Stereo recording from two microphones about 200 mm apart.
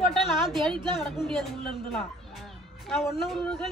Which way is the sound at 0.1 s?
Centre (ahead or behind).